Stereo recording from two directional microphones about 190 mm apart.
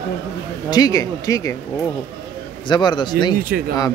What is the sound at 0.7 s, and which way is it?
Speech, 20° left (ahead or behind).